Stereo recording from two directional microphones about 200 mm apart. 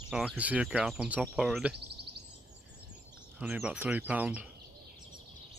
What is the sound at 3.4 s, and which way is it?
Speech, 5° right (ahead or behind).